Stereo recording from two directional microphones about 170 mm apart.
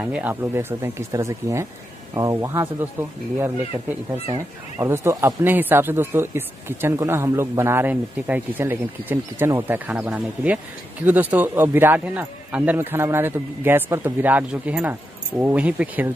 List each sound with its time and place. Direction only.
0.0 s speech: 10° right (ahead or behind)
4.7 s speech: 15° right (ahead or behind)